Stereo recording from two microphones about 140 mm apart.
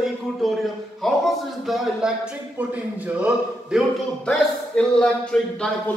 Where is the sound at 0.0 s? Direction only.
Centre (ahead or behind).